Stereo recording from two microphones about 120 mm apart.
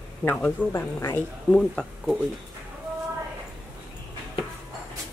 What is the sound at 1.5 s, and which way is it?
Speech, 5° left (ahead or behind).